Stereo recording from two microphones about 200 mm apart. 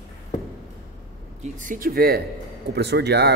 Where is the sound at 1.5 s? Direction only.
40° right (ahead or behind).